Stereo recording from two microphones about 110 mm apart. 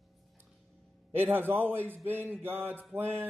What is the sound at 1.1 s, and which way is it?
A man's voice, 20° right (ahead or behind).